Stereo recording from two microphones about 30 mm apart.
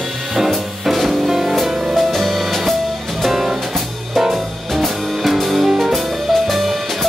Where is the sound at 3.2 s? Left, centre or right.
Centre.